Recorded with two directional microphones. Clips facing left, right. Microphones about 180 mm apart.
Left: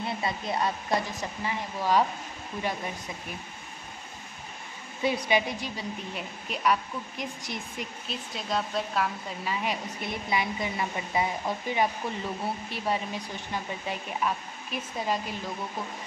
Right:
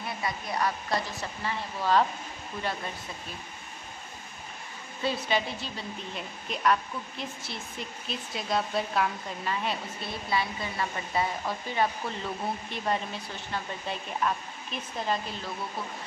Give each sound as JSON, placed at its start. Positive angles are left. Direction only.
{"t": 0.0, "sound": "speech", "side_deg": 25}
{"t": 5.0, "sound": "speech", "side_deg": 15}
{"t": 8.1, "sound": "speech", "side_deg": 0}